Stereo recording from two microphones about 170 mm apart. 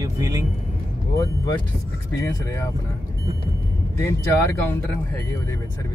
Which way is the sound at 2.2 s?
15° left (ahead or behind).